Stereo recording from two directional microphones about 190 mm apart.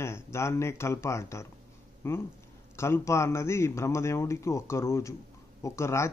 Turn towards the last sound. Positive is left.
turn(degrees=15)  # may be behind; listen again after turning